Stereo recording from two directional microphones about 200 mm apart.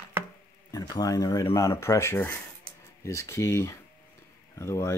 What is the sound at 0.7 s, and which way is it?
Speech, 15° left (ahead or behind).